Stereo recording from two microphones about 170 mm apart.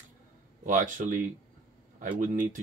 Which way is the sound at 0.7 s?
50° right (ahead or behind).